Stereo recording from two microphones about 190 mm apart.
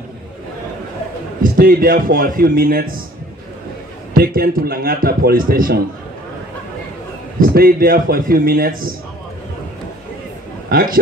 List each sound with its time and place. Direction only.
1.4 s a man's voice: 50° right (ahead or behind)
4.1 s a man's voice: 50° right (ahead or behind)
7.3 s a man's voice: 50° right (ahead or behind)
10.7 s speech: 50° right (ahead or behind)